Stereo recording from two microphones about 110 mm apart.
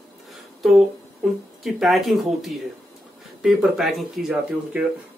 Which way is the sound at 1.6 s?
Centre (ahead or behind).